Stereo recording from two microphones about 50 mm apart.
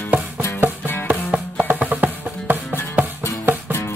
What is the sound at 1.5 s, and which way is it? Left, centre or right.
Music, right.